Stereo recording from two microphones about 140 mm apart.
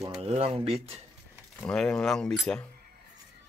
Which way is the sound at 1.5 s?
5° left (ahead or behind).